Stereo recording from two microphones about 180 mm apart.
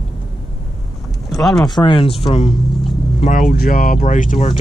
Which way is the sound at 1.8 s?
30° left (ahead or behind).